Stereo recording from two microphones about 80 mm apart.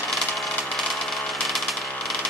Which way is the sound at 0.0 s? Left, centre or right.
Centre.